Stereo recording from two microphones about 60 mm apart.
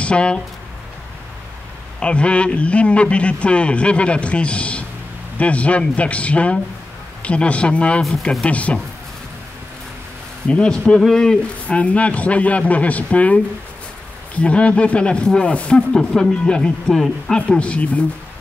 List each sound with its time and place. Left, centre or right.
0.0 s speech: centre
2.0 s a man's voice: centre
8.2 s speech: centre
8.5 s a man's voice: left
10.5 s speech: centre
11.6 s a man's voice: left
17.4 s a man's voice: centre